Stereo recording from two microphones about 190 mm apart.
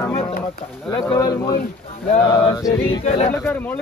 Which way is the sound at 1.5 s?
45° left (ahead or behind).